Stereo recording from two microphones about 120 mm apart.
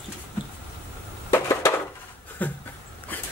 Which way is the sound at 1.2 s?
25° left (ahead or behind).